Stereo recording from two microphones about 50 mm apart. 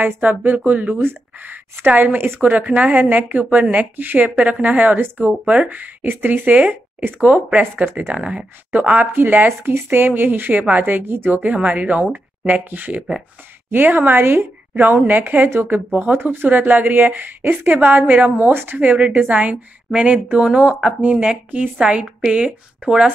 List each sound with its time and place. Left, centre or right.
0.0 s speech: right
2.4 s speech: right
16.2 s speech: right
16.4 s speech: right
18.8 s a woman's voice: right